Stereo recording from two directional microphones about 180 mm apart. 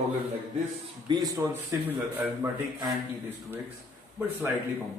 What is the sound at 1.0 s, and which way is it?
A man's voice, 20° right (ahead or behind).